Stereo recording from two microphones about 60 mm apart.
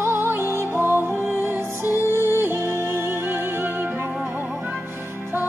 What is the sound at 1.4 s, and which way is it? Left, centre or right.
Music, right.